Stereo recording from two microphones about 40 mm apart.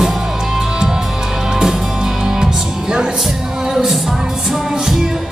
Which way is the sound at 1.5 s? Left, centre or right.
Centre.